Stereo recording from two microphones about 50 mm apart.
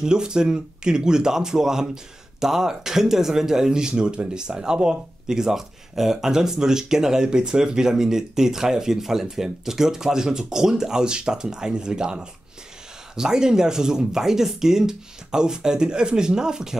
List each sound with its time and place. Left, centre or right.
0.0 s speech: centre